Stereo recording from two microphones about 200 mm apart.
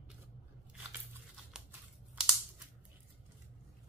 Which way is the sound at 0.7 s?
5° right (ahead or behind).